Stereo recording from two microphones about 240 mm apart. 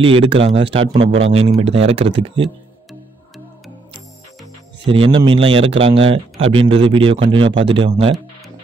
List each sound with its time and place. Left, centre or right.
0.0 s a man's voice: right
4.8 s a man's voice: right